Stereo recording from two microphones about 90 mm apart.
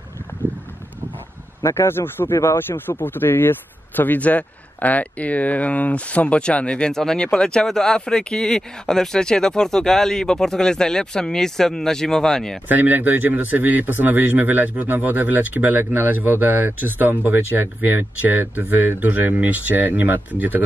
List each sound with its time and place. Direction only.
1.6 s speech: 30° left (ahead or behind); by 12.5 s 5° left (ahead or behind)
12.6 s speech: 20° right (ahead or behind)